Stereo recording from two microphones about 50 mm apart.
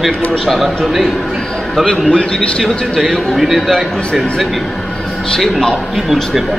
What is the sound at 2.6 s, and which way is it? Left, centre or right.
A man's voice, centre.